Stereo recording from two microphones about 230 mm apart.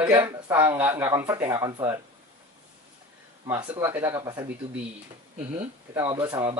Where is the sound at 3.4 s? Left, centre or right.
Centre.